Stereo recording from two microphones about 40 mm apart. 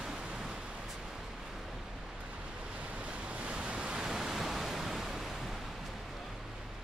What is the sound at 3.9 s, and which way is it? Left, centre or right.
Pink noise, centre.